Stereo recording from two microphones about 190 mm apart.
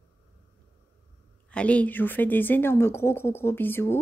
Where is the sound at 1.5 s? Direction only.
5° left (ahead or behind).